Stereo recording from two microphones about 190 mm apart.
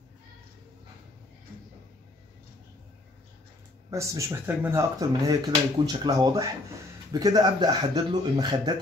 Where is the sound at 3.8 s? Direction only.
15° right (ahead or behind).